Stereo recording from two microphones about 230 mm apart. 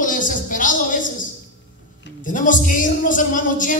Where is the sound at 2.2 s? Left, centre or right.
Left.